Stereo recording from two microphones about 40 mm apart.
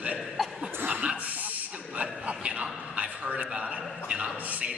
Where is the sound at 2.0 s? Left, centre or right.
Right.